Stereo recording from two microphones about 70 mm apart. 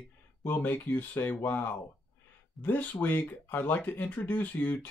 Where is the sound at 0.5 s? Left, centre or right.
Left.